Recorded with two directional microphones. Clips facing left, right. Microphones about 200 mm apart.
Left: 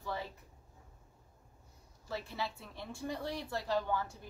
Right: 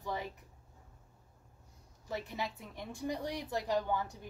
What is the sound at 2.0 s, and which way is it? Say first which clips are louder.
A woman's voice: right 1 dB; 15° right (ahead or behind).